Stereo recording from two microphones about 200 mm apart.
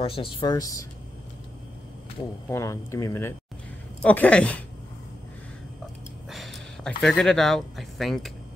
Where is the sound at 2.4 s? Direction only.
15° left (ahead or behind).